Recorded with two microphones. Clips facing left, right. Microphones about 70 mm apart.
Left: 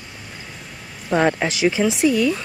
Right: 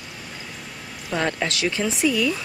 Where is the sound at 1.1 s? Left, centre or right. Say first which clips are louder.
Left 6 dB; left.